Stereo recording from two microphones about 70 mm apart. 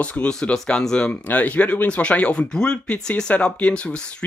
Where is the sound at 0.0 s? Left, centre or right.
Centre.